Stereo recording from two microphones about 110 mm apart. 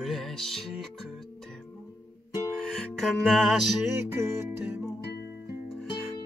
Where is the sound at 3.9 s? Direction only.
25° right (ahead or behind).